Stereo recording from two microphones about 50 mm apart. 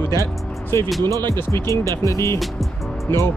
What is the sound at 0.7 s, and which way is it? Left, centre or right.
Speech, left.